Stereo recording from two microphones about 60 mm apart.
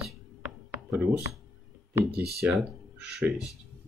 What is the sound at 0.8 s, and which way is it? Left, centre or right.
Speech, centre.